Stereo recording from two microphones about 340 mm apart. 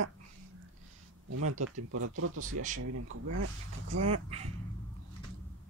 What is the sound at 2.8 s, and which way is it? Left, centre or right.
Speech, right.